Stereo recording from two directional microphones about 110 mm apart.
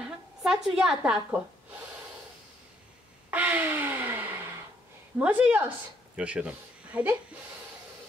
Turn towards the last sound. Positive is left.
turn(degrees=-10)  # may be behind; listen again after turning